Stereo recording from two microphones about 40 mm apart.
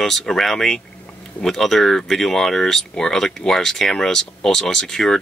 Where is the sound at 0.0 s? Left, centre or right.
Centre.